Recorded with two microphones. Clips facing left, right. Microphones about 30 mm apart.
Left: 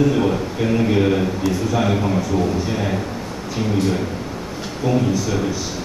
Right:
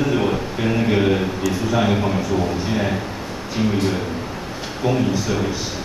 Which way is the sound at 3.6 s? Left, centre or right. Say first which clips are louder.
Right 2 dB; centre.